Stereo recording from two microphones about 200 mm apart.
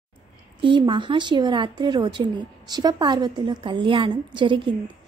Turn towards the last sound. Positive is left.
turn(degrees=-25)  # may be behind; listen again after turning